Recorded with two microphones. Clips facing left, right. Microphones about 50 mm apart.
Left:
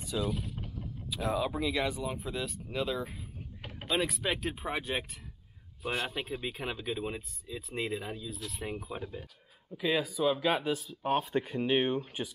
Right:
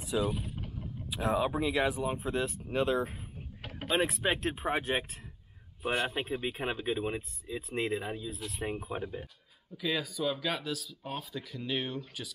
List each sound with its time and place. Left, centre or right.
0.0 s speech: centre
2.3 s speech: right
3.6 s a sound: centre
4.0 s speech: right
4.6 s speech: centre
5.8 s speech: centre
9.8 s speech: centre
10.3 s speech: left
10.9 s speech: left
11.1 s speech: left
11.4 s speech: left